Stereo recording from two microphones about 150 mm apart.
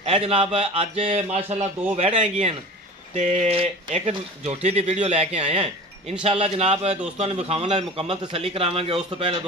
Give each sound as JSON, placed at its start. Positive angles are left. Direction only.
{"t": 0.0, "sound": "a man's voice", "side_deg": -45}